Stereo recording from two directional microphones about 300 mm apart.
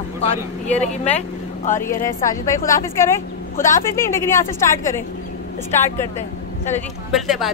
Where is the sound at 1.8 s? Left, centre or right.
Centre.